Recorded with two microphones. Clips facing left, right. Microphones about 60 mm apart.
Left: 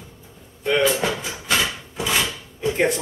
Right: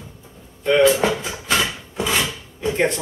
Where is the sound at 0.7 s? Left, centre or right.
Centre.